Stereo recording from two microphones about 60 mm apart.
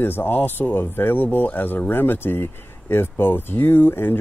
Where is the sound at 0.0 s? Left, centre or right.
Left.